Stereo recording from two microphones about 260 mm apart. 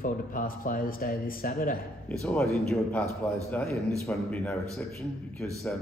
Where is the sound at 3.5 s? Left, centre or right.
Centre.